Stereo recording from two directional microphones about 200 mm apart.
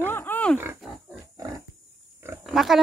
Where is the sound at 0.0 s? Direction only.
10° left (ahead or behind).